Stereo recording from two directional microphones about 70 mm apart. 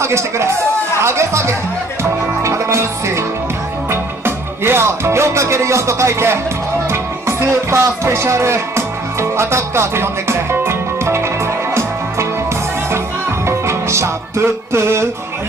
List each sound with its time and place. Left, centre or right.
0.0 s a man's voice: right
2.4 s music: right
4.6 s music: right
13.5 s music: right
14.7 s a man's voice: right